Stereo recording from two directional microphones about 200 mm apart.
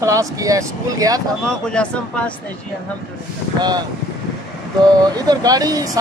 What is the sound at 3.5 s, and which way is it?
Speech, 20° right (ahead or behind).